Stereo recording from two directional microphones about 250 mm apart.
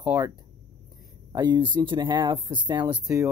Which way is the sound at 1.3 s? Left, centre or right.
Centre.